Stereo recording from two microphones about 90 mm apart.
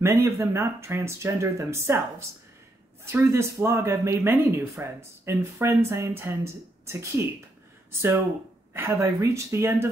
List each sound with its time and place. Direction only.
0.0 s speech: 30° right (ahead or behind)
3.1 s speech: 30° right (ahead or behind)
8.7 s speech: 25° right (ahead or behind)